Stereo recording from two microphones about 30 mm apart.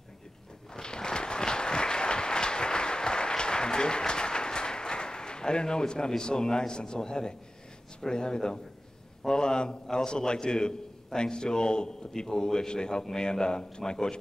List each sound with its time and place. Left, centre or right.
0.7 s applause: left
8.1 s a man's voice: left